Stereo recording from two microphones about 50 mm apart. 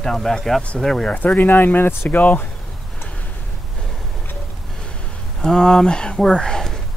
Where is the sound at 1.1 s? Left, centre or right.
Left.